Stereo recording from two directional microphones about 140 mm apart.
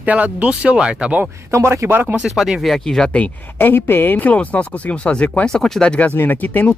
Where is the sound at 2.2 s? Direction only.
Centre (ahead or behind).